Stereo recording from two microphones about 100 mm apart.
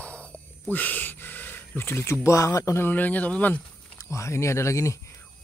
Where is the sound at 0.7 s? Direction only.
15° left (ahead or behind).